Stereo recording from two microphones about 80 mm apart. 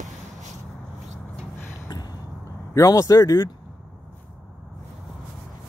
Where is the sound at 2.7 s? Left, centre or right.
Left.